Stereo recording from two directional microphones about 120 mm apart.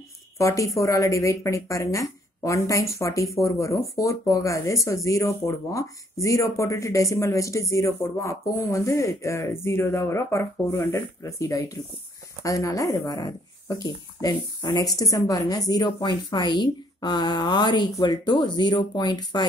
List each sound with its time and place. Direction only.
0.4 s a woman's voice: 25° left (ahead or behind)